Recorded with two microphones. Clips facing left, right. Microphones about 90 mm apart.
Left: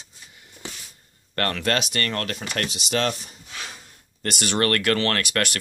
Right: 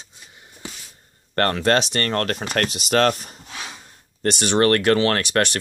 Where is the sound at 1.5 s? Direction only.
30° right (ahead or behind); by 3.3 s 50° right (ahead or behind).